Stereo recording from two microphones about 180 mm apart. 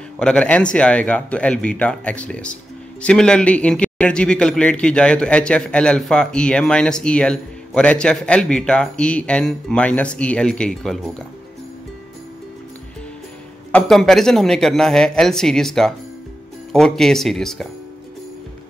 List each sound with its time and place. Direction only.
0.2 s speech: 5° left (ahead or behind)
13.7 s speech: 5° left (ahead or behind)